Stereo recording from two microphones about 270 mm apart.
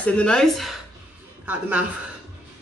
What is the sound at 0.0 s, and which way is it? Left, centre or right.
A woman's voice, centre.